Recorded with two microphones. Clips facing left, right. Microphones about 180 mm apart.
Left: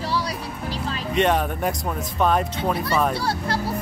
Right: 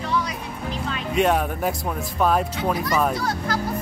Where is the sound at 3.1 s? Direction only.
30° left (ahead or behind).